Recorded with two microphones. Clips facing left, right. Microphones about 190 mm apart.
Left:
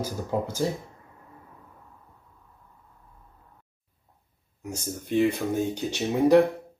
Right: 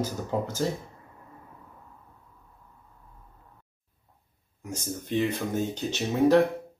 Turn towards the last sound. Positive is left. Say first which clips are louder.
# left 2 dB
turn(degrees=10)  # may be behind; listen again after turning